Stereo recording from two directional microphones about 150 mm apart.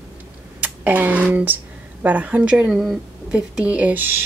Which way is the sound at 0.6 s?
10° right (ahead or behind).